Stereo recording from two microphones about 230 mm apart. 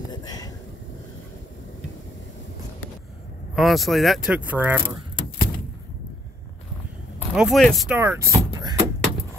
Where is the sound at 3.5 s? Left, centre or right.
Centre.